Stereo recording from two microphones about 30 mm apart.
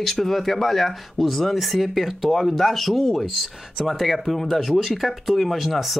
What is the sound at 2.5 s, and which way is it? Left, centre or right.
Speech, centre.